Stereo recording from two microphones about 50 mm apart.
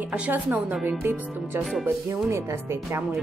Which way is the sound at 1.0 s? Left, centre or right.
Right.